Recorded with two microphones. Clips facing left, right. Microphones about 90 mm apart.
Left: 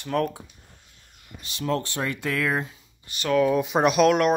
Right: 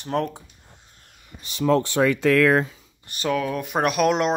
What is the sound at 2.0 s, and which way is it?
Speech, 90° right.